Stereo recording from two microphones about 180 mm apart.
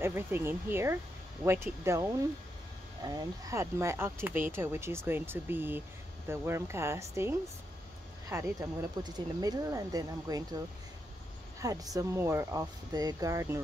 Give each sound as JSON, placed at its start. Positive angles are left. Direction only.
{"t": 0.0, "sound": "speech", "side_deg": -15}
{"t": 11.6, "sound": "speech", "side_deg": -20}